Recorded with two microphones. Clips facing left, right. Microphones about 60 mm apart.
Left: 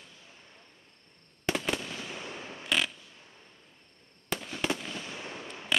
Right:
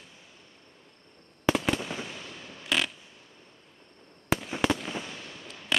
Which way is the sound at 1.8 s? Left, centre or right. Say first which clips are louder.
Right 4 dB; centre.